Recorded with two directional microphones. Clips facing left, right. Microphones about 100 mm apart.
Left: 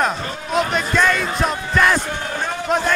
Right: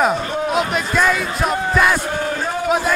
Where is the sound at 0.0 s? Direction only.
5° right (ahead or behind).